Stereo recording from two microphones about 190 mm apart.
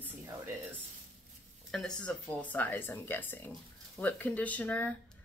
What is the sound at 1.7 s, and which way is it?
Speech, 5° left (ahead or behind).